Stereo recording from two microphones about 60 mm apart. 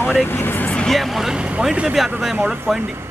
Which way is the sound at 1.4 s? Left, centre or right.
Centre.